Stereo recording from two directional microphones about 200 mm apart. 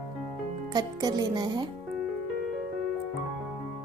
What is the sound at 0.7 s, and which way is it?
Speech, 20° right (ahead or behind).